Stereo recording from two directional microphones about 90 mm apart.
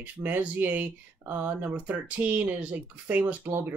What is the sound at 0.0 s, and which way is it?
Speech, 20° right (ahead or behind).